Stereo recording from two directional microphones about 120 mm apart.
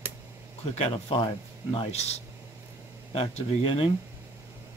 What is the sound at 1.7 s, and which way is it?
Speech, 65° left (ahead or behind).